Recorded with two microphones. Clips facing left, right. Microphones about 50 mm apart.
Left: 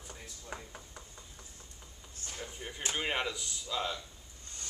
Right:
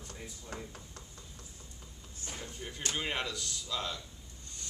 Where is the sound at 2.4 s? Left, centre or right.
Centre.